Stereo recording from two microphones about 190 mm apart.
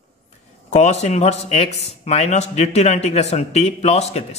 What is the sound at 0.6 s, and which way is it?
Speech, 35° left (ahead or behind).